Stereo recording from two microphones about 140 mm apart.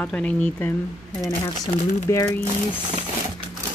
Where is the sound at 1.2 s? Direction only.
25° left (ahead or behind).